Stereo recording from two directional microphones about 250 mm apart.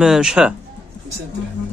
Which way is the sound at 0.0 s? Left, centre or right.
Centre.